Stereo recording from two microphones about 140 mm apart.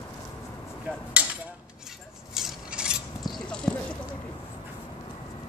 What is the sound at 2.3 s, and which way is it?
Filing, 5° right (ahead or behind).